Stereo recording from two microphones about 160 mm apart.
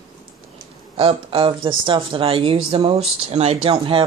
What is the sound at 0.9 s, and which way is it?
A woman's voice, 35° right (ahead or behind).